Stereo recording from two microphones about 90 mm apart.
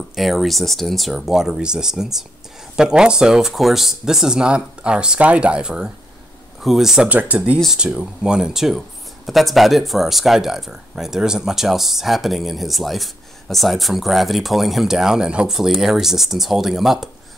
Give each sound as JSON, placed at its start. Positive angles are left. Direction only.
{"t": 0.1, "sound": "speech", "side_deg": 0}
{"t": 7.1, "sound": "speech", "side_deg": -15}